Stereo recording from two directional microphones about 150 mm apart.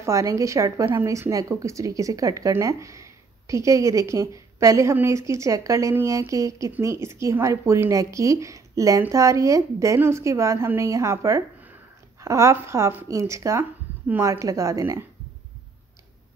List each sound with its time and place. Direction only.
0.0 s a woman's voice: 20° right (ahead or behind)